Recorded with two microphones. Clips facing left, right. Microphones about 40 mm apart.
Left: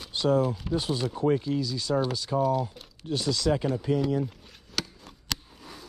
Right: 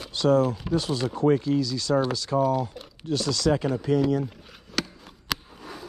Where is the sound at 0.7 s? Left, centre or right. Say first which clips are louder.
Right 3 dB; centre.